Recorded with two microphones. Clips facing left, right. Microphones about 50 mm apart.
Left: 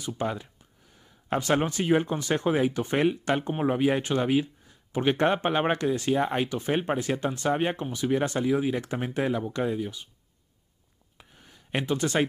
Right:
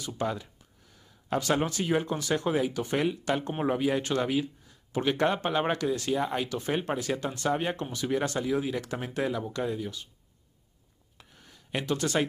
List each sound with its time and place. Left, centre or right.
0.0 s speech: centre
6.5 s speech: centre
11.1 s a sound: centre